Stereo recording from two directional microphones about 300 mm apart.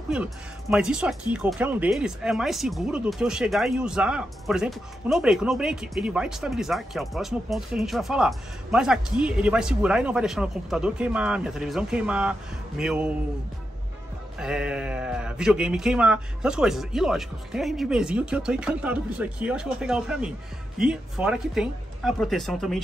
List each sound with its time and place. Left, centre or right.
0.1 s speech: centre
14.4 s speech: centre